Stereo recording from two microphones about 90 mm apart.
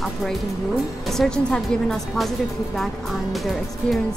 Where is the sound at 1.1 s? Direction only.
5° left (ahead or behind).